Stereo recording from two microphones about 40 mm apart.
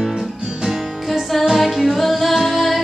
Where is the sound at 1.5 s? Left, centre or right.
Centre.